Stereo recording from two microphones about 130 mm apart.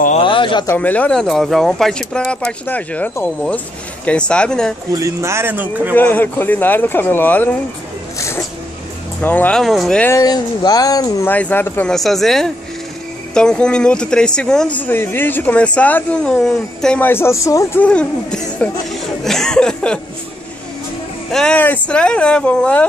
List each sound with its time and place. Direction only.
0.2 s a sound: 40° left (ahead or behind)
0.7 s speech: 10° left (ahead or behind)
4.9 s speech: 25° right (ahead or behind)
5.9 s speech: 15° left (ahead or behind)
8.2 s a sound: 25° left (ahead or behind)
9.2 s speech: 15° left (ahead or behind)
9.6 s speech: centre (ahead or behind)
10.1 s speech: 30° left (ahead or behind)
11.2 s speech: 15° left (ahead or behind)
11.9 s speech: centre (ahead or behind); by 17.6 s 25° left (ahead or behind)
17.7 s speech: 10° left (ahead or behind)
21.3 s speech: 5° left (ahead or behind)